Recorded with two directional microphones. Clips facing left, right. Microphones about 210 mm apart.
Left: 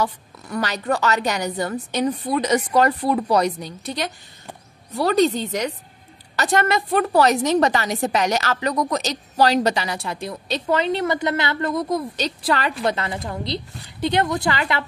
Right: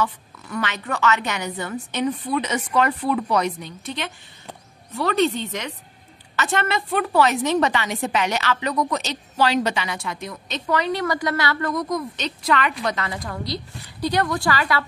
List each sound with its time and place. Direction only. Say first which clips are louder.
0.0 s a woman's voice: left 1 dB; 35° left (ahead or behind); by 14.9 s 20° left (ahead or behind)